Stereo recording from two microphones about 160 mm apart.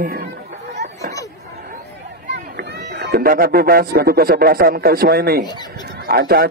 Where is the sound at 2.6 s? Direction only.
90° right.